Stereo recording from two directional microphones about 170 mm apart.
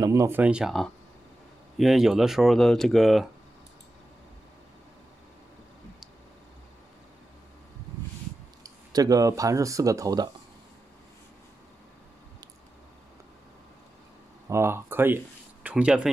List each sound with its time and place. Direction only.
0.0 s speech: 15° right (ahead or behind); by 3.3 s centre (ahead or behind)
8.6 s speech: 20° right (ahead or behind)
14.5 s speech: 15° right (ahead or behind)